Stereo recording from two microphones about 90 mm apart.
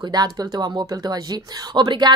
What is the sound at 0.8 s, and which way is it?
A woman's voice, 40° right (ahead or behind).